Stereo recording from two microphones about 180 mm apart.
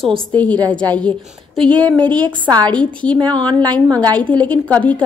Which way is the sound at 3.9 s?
20° right (ahead or behind).